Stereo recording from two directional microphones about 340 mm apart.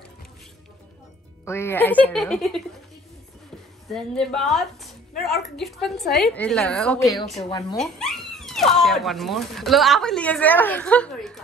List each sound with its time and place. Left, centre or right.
1.4 s a woman's voice: centre
3.8 s a woman's voice: centre
7.7 s speech: centre